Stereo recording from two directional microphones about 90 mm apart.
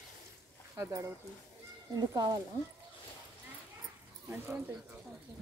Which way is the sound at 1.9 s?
45° right (ahead or behind).